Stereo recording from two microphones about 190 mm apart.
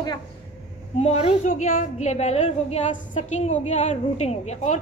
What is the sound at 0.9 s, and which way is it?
A woman's voice, 35° left (ahead or behind).